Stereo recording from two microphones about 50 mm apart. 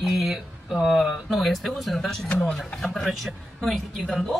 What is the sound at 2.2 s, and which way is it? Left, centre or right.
Speech, left.